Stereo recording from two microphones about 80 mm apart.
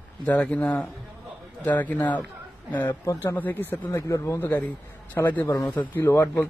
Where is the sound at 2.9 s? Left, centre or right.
Left.